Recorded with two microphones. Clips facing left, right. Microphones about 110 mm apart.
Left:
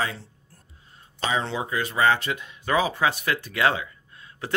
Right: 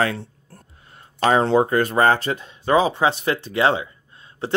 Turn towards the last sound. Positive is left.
turn(degrees=-25)  # may be behind; listen again after turning